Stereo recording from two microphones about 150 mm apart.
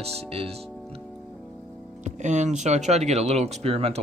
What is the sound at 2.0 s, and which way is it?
Speech, 50° right (ahead or behind).